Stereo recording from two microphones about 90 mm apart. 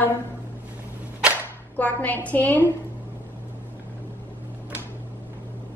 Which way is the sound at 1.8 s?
15° left (ahead or behind).